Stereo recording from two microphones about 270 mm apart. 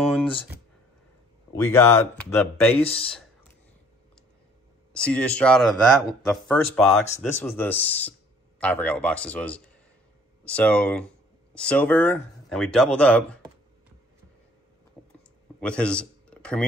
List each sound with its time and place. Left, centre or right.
0.0 s a sound: centre
1.7 s speech: centre
2.8 s speech: left
4.9 s speech: centre
15.6 s a man's voice: centre